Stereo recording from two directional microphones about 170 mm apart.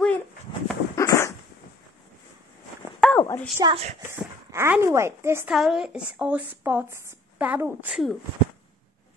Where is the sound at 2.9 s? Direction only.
5° left (ahead or behind).